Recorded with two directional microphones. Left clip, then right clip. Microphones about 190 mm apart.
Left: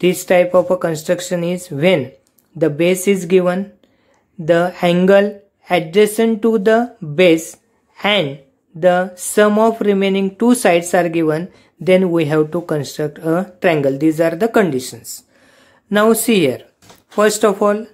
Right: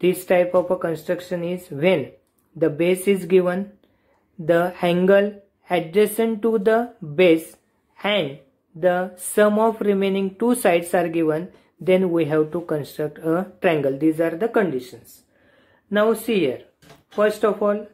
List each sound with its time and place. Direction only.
0.0 s speech: 20° left (ahead or behind); by 17.7 s 35° left (ahead or behind)